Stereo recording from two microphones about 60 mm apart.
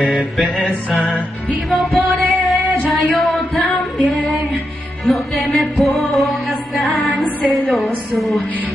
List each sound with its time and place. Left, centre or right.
0.9 s music: centre
1.7 s music: centre
2.9 s singing: centre
5.0 s music: centre